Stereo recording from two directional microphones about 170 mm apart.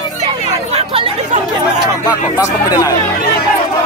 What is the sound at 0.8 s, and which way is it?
Chatter, 35° right (ahead or behind).